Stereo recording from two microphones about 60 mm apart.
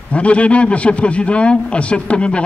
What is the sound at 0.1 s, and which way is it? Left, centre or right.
A man's voice, centre.